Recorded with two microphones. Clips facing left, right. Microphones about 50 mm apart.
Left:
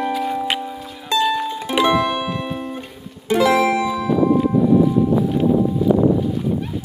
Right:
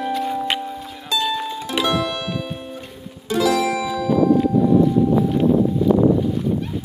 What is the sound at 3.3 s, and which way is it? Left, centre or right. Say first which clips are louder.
Music: left 3 dB; left.